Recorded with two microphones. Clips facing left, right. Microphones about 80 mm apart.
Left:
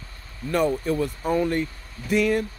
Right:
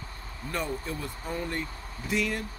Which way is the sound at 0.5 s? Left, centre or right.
Left.